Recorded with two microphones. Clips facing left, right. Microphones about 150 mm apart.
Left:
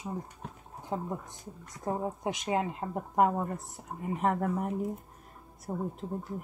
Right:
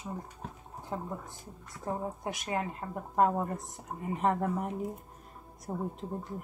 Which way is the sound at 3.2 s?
Centre (ahead or behind).